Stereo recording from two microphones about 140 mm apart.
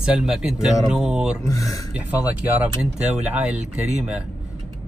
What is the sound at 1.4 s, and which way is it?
Speech, 25° left (ahead or behind).